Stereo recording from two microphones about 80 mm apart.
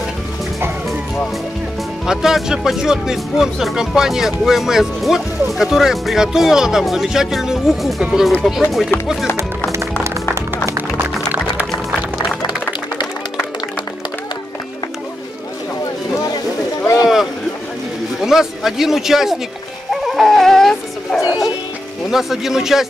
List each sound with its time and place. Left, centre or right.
2.0 s speech: centre
12.2 s music: left
16.8 s boat: left
18.2 s a sound: centre
19.9 s dog: centre
22.1 s speech: centre